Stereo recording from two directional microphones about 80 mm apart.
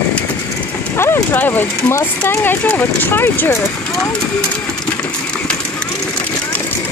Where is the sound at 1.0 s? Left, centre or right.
Left.